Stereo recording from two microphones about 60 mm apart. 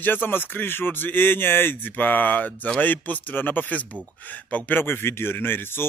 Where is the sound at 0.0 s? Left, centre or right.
Left.